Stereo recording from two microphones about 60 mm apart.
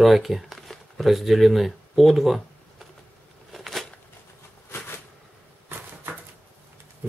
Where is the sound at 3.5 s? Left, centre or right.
Centre.